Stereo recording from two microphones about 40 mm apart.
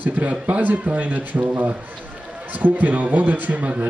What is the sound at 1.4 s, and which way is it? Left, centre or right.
Speech, right.